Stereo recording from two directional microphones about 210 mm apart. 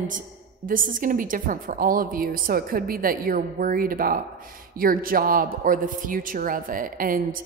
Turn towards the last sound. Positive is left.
turn(degrees=-40)  # may be behind; listen again after turning